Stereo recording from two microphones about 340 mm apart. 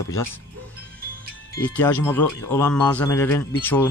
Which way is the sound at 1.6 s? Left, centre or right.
Centre.